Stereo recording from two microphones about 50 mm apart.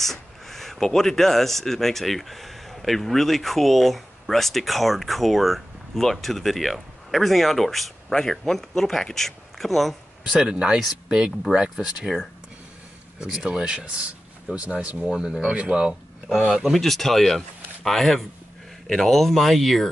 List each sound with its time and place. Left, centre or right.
0.0 s speech: centre
10.2 s speech: centre
13.2 s speech: centre
15.0 s speech: centre
16.4 s speech: centre